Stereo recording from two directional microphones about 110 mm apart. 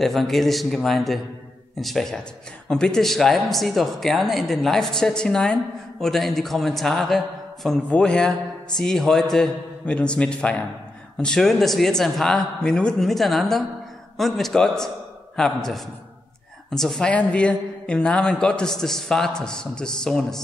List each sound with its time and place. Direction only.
0.0 s a woman's voice: centre (ahead or behind)